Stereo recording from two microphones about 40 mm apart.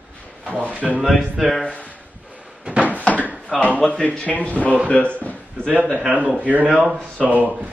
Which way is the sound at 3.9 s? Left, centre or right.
Left.